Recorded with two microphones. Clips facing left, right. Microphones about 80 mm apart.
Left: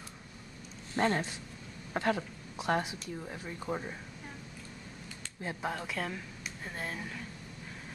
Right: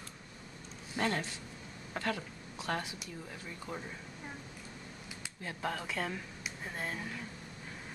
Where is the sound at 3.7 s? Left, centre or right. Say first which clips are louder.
Left 7 dB; left.